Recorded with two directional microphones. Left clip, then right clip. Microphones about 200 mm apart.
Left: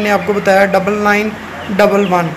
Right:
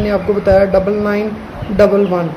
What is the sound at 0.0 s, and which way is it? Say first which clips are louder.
A man's voice: left 1 dB; centre (ahead or behind).